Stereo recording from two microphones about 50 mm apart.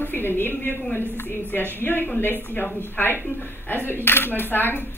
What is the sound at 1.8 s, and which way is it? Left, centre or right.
A woman's voice, left.